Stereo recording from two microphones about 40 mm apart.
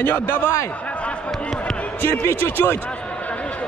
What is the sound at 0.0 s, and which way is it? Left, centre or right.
Speech, left.